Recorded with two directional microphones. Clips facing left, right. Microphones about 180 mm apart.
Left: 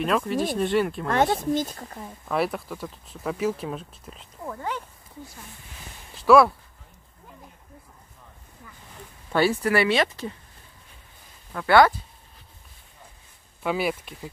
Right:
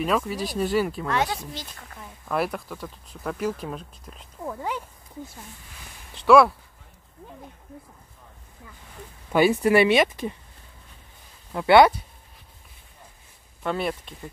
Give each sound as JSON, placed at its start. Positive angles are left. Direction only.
{"t": 0.0, "sound": "speech", "side_deg": 0}
{"t": 1.0, "sound": "speech", "side_deg": 50}
{"t": 2.2, "sound": "speech", "side_deg": 0}
{"t": 6.2, "sound": "speech", "side_deg": 0}
{"t": 9.3, "sound": "speech", "side_deg": -15}
{"t": 11.5, "sound": "speech", "side_deg": -20}
{"t": 13.6, "sound": "speech", "side_deg": 5}